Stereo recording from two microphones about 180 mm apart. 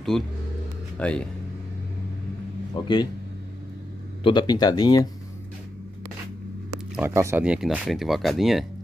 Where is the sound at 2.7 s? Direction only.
25° left (ahead or behind).